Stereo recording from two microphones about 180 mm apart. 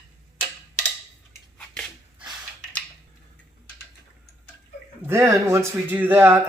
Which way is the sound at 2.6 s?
5° left (ahead or behind).